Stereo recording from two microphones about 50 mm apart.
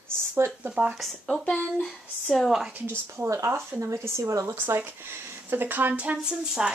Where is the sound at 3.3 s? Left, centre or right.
Right.